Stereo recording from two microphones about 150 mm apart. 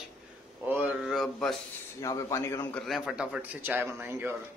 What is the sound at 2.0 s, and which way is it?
Speech, 20° left (ahead or behind).